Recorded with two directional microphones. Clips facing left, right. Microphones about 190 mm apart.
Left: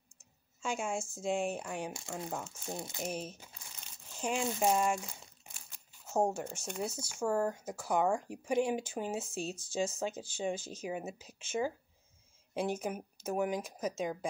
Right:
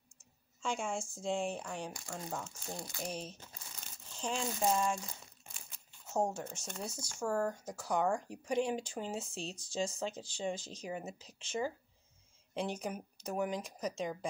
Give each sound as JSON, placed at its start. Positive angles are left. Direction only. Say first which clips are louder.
{"t": 0.6, "sound": "a woman's voice", "louder": "left 1 dB", "side_deg": 5}
{"t": 1.9, "sound": "speech", "louder": "left 3 dB", "side_deg": 25}
{"t": 2.1, "sound": "speech", "louder": "left 2 dB", "side_deg": 10}
{"t": 2.7, "sound": "speech", "louder": "left 3 dB", "side_deg": 20}
{"t": 3.1, "sound": "speech", "louder": "left 3 dB", "side_deg": 10}
{"t": 6.3, "sound": "speech", "louder": "left 4 dB", "side_deg": 10}